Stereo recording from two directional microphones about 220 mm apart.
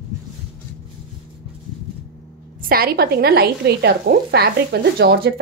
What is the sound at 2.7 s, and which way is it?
A woman's voice, 45° right (ahead or behind).